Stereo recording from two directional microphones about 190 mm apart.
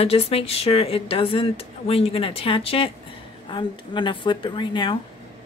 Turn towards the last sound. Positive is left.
turn(degrees=25)  # may be behind; listen again after turning